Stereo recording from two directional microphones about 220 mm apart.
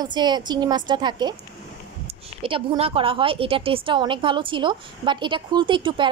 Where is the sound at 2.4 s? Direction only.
25° right (ahead or behind).